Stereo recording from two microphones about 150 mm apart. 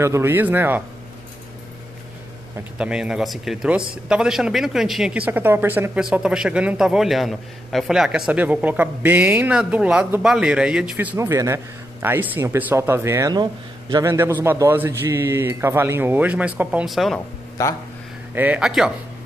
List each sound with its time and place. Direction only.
0.0 s a man's voice: 15° right (ahead or behind)
2.8 s a man's voice: 5° right (ahead or behind)
11.1 s a man's voice: 20° right (ahead or behind)
14.1 s a man's voice: 15° right (ahead or behind); by 17.2 s centre (ahead or behind)
17.6 s speech: 20° left (ahead or behind)
18.3 s speech: 10° right (ahead or behind)